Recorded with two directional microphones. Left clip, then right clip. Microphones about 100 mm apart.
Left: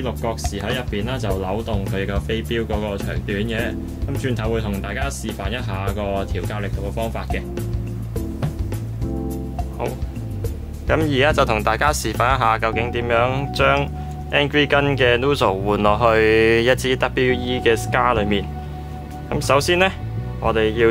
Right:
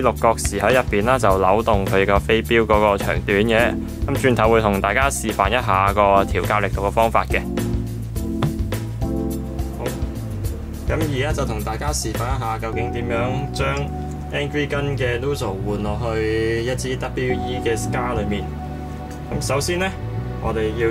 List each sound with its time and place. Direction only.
0.0 s speech: 35° right (ahead or behind)
10.9 s speech: 20° left (ahead or behind)